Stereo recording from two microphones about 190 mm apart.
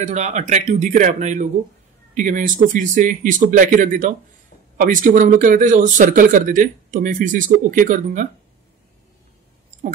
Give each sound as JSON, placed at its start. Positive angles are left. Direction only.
{"t": 0.0, "sound": "speech", "side_deg": -35}